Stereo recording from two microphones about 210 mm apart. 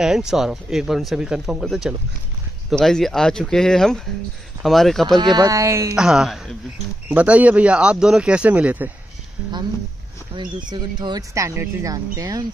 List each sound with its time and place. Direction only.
0.0 s speech: 5° right (ahead or behind)
5.1 s speech: 20° right (ahead or behind)
5.9 s speech: centre (ahead or behind)
10.3 s speech: 25° right (ahead or behind)